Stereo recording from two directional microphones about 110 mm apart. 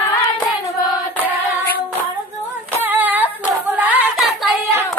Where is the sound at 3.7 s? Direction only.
15° right (ahead or behind).